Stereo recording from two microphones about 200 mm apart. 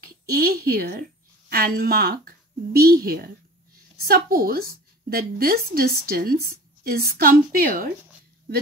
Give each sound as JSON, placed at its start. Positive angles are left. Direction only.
{"t": 0.0, "sound": "a woman's voice", "side_deg": -50}